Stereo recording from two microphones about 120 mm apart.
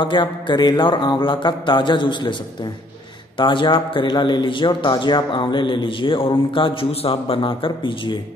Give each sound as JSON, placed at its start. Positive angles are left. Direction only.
{"t": 0.0, "sound": "mantra", "side_deg": 40}
{"t": 3.3, "sound": "speech", "side_deg": 40}